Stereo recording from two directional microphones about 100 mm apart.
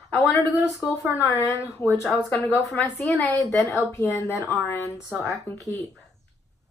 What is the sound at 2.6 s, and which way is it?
Speech, 5° left (ahead or behind).